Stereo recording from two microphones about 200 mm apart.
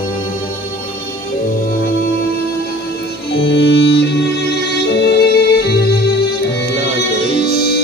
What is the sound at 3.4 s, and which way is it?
Music, 60° left (ahead or behind).